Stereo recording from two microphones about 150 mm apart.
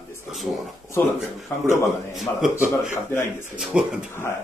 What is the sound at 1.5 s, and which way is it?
Speech, 15° left (ahead or behind).